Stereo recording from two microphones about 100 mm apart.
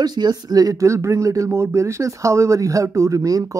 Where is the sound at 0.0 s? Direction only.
45° right (ahead or behind).